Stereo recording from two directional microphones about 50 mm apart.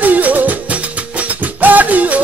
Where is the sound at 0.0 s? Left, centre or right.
Right.